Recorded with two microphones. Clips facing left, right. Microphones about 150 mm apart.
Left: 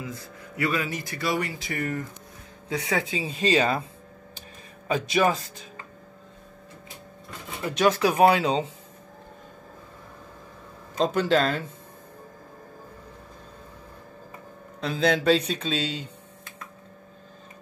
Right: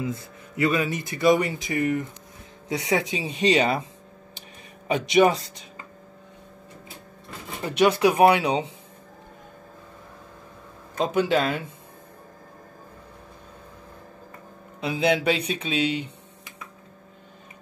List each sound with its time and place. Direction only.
0.0 s speech: 25° right (ahead or behind)
5.1 s speech: 15° right (ahead or behind)
7.8 s speech: 15° right (ahead or behind)
11.0 s speech: 10° right (ahead or behind)
14.8 s speech: 10° right (ahead or behind)